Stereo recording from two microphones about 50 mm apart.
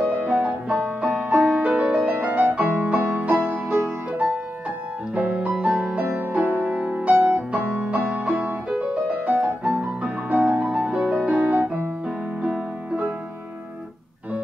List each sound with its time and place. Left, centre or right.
0.0 s music: right
0.3 s music: right
2.0 s music: right
5.1 s music: right
6.7 s music: right